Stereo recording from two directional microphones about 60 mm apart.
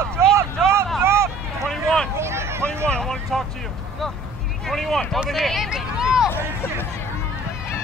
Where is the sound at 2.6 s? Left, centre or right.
Centre.